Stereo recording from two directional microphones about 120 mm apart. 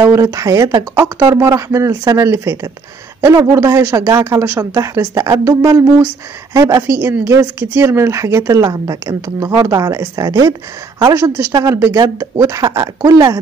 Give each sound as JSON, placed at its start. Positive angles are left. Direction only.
{"t": 0.0, "sound": "speech", "side_deg": -25}